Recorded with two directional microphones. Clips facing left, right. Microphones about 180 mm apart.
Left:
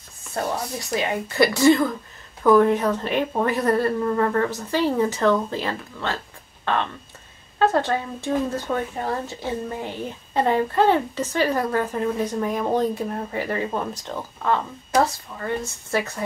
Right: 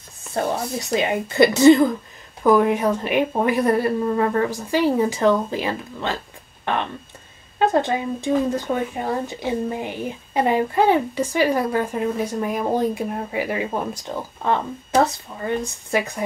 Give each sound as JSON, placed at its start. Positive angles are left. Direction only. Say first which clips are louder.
{"t": 0.3, "sound": "speech", "louder": "right 3 dB", "side_deg": -25}
{"t": 14.4, "sound": "speech", "louder": "right 1 dB", "side_deg": -25}